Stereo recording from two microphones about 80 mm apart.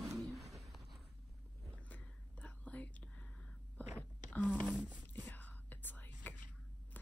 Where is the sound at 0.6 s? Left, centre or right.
Centre.